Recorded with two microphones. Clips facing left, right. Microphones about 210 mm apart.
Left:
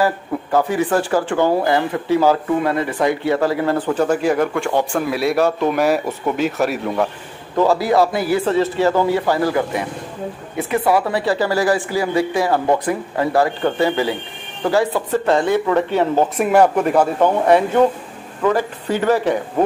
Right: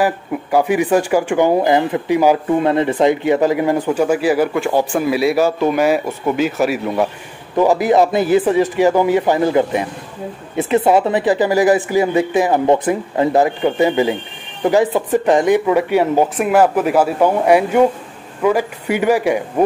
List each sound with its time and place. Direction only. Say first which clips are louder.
0.0 s speech: right 1 dB; 15° right (ahead or behind)
7.5 s speech: right 2 dB; 15° right (ahead or behind)